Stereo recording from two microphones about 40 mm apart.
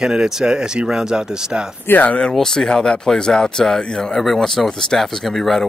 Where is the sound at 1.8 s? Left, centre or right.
Left.